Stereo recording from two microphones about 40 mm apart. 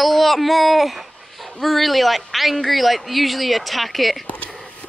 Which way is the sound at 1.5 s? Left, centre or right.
Centre.